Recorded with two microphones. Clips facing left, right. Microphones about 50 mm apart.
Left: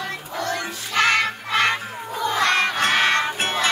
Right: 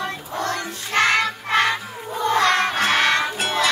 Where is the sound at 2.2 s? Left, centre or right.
Right.